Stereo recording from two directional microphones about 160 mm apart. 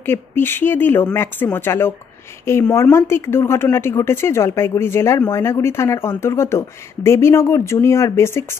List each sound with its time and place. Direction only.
0.0 s speech: 15° left (ahead or behind)